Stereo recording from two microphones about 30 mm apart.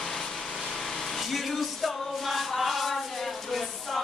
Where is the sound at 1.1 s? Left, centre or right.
Centre.